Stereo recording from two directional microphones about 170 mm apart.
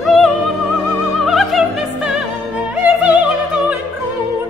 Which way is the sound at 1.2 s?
Centre (ahead or behind).